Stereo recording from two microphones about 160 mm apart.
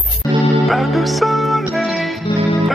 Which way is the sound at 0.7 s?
Centre (ahead or behind).